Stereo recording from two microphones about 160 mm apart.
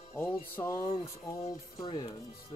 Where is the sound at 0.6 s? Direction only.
20° left (ahead or behind).